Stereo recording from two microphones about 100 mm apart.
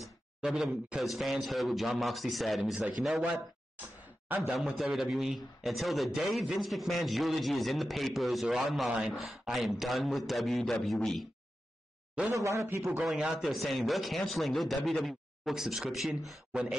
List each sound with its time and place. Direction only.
0.4 s a man's voice: 10° right (ahead or behind)
4.6 s a man's voice: centre (ahead or behind)
12.3 s a man's voice: 30° right (ahead or behind)
12.6 s a man's voice: 20° right (ahead or behind)
13.0 s a man's voice: 5° right (ahead or behind)